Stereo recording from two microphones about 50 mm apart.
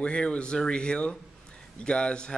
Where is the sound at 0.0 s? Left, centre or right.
Left.